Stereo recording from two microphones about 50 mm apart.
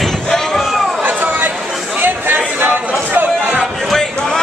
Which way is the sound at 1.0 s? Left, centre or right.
Right.